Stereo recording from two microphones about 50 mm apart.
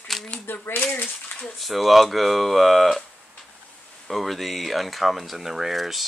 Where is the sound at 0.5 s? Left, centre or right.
Left.